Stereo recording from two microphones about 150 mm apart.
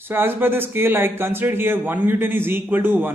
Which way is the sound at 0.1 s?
15° right (ahead or behind).